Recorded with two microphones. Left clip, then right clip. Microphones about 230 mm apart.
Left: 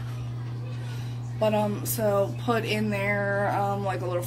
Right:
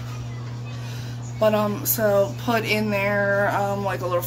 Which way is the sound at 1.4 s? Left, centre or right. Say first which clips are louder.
Right 5 dB; centre.